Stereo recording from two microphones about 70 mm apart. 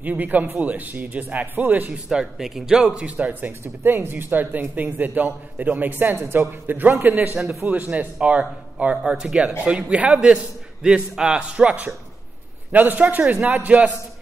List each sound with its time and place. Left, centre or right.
0.0 s speech: right
2.0 s a man's voice: centre